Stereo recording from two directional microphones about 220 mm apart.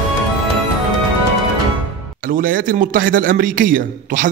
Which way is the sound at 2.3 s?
40° right (ahead or behind).